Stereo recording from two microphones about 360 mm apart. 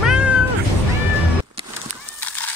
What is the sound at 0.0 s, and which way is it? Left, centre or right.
Cat, centre.